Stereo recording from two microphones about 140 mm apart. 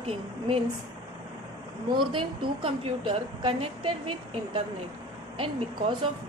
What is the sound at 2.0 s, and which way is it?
A woman's voice, 35° right (ahead or behind).